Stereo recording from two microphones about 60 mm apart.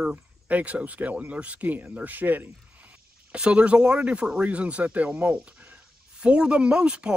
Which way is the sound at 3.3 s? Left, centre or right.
Centre.